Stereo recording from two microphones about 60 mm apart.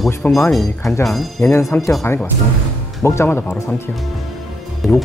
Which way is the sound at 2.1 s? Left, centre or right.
Left.